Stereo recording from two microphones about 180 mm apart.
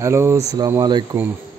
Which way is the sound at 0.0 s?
15° right (ahead or behind).